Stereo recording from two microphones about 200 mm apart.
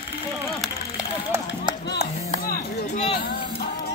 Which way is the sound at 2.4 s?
50° left (ahead or behind).